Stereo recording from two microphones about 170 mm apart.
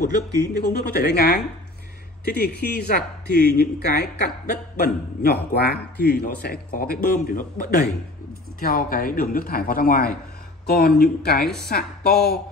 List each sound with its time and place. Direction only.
0.4 s a man's voice: 70° left (ahead or behind)